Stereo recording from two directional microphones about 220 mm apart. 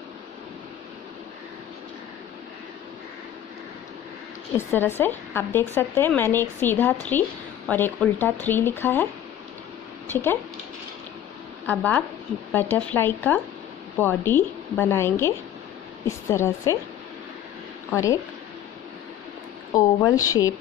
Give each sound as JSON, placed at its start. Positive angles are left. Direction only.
{"t": 4.6, "sound": "speech", "side_deg": 10}
{"t": 10.0, "sound": "speech", "side_deg": 10}
{"t": 11.6, "sound": "speech", "side_deg": 5}
{"t": 17.9, "sound": "speech", "side_deg": 15}
{"t": 19.7, "sound": "speech", "side_deg": 15}